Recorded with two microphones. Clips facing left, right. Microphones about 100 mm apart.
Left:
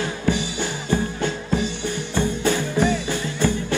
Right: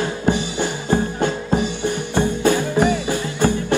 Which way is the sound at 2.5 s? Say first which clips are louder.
Right 3 dB; 50° right (ahead or behind).